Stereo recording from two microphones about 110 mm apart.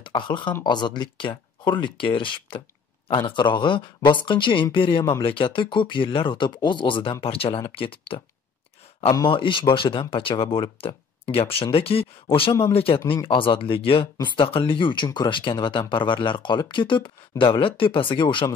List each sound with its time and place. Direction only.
0.0 s speech: 45° left (ahead or behind)
9.3 s speech: 50° left (ahead or behind)